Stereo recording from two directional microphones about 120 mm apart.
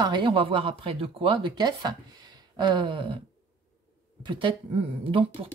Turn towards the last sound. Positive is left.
turn(degrees=-50)  # may be behind; listen again after turning